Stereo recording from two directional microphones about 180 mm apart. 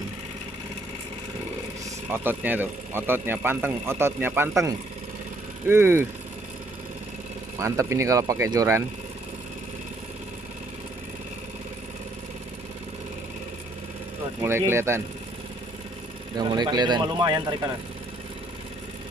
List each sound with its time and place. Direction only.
2.1 s speech: 10° right (ahead or behind)
7.5 s speech: 15° right (ahead or behind)
14.4 s speech: 15° right (ahead or behind)
16.3 s speech: 25° right (ahead or behind)